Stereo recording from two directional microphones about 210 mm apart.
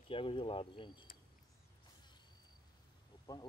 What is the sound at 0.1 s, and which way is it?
Speech, 25° left (ahead or behind).